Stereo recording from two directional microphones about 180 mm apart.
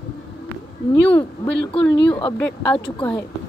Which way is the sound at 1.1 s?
10° left (ahead or behind).